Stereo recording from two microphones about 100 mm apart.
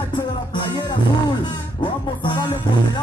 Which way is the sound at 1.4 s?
45° left (ahead or behind).